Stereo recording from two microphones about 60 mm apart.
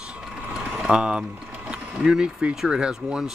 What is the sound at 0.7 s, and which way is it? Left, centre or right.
Speech, centre.